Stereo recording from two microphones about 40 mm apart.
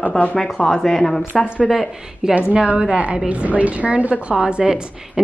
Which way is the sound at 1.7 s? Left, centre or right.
Centre.